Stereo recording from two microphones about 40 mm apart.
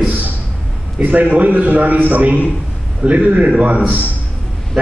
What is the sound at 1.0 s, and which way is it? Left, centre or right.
A man's voice, right.